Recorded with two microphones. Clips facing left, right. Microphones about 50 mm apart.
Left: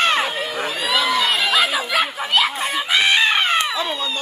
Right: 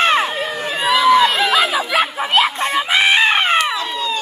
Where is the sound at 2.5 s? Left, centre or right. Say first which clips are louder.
Right 4 dB; centre.